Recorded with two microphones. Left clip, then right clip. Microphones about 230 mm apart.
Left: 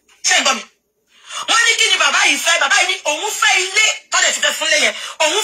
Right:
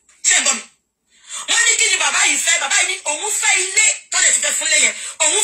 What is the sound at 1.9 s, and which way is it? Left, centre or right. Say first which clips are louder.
Speech: left 3 dB; left.